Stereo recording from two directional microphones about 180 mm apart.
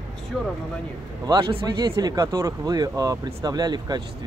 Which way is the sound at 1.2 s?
25° right (ahead or behind).